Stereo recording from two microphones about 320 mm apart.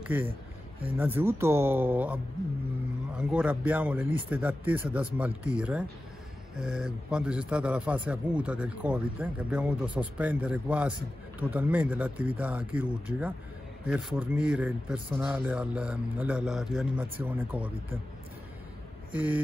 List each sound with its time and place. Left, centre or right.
0.1 s a man's voice: centre
3.2 s a man's voice: centre
19.1 s a man's voice: centre